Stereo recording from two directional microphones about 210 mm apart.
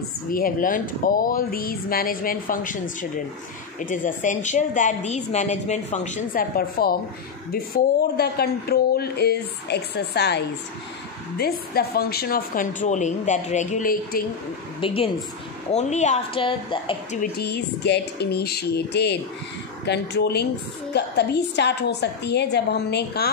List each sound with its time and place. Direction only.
0.3 s a woman's voice: 40° left (ahead or behind)
14.8 s a woman's voice: 25° left (ahead or behind)
17.2 s a woman's voice: 50° left (ahead or behind)